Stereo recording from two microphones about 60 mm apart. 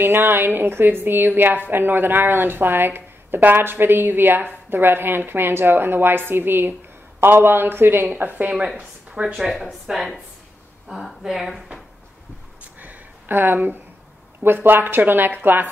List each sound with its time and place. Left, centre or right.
0.0 s a woman's voice: right
8.7 s speech: centre
9.4 s speech: centre
12.7 s a sound: right
14.4 s a woman's voice: right